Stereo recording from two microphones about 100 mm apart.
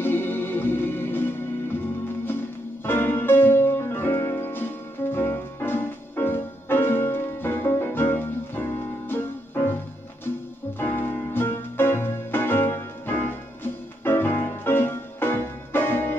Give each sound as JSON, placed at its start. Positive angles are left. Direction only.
{"t": 0.0, "sound": "music", "side_deg": 20}
{"t": 2.8, "sound": "music", "side_deg": 20}
{"t": 10.8, "sound": "music", "side_deg": 20}